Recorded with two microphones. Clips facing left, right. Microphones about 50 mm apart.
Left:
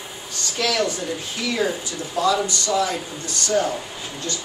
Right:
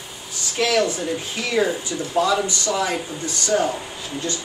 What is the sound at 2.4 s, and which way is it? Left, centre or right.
Speech, right.